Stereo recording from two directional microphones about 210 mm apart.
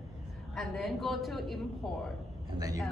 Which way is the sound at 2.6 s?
15° right (ahead or behind).